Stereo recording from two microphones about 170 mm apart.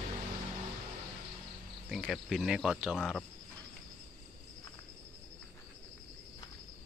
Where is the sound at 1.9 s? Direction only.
Centre (ahead or behind).